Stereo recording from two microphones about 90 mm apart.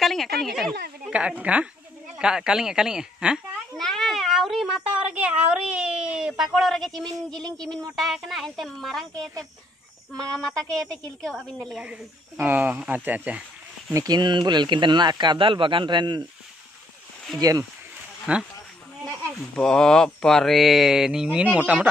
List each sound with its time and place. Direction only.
0.0 s a woman's voice: centre (ahead or behind)
1.1 s speech: 15° right (ahead or behind)
3.7 s speech: 5° left (ahead or behind)
10.1 s a woman's voice: 5° left (ahead or behind)
12.4 s speech: 20° right (ahead or behind)
13.9 s speech: 50° right (ahead or behind)
17.4 s speech: 40° right (ahead or behind)
18.3 s speech: 15° right (ahead or behind)
19.5 s speech: 10° left (ahead or behind); by 21.8 s 15° right (ahead or behind)